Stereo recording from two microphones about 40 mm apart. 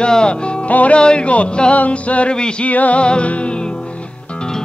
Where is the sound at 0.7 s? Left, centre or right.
Left.